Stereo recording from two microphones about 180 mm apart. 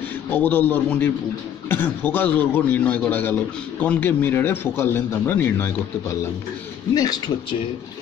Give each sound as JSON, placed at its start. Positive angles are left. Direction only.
{"t": 0.3, "sound": "a man's voice", "side_deg": 10}